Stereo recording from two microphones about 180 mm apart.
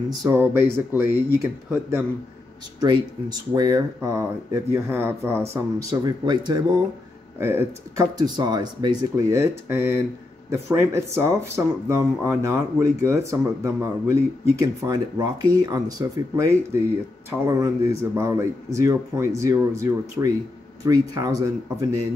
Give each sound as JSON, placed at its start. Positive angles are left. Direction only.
{"t": 0.1, "sound": "speech", "side_deg": -20}